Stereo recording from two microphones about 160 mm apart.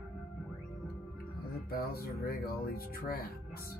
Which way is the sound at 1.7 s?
70° left (ahead or behind).